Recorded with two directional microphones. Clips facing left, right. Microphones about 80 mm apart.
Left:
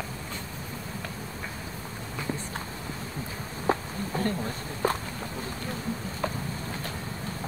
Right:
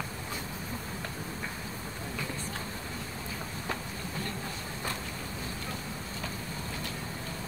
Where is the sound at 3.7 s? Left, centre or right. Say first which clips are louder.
Left 11 dB; left.